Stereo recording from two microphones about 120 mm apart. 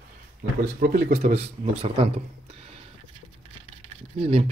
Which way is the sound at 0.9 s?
90° right.